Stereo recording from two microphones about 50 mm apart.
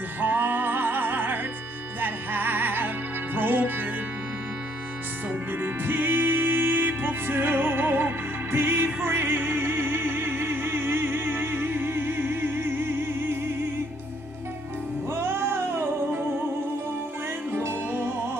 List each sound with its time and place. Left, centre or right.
0.2 s music: right
5.5 s music: right
15.0 s music: right
17.5 s music: right